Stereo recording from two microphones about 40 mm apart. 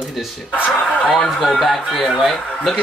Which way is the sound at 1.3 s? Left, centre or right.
Centre.